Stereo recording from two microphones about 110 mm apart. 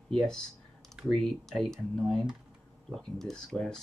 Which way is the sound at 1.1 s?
5° left (ahead or behind).